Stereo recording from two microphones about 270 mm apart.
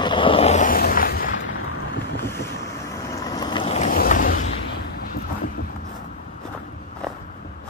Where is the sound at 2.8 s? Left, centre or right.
Centre; by 5.7 s left.